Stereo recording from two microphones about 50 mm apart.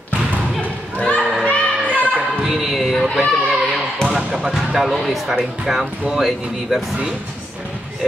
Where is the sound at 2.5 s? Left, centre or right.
Centre.